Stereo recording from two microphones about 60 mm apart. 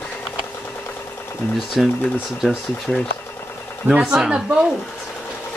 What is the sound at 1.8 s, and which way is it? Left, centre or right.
Speech, centre.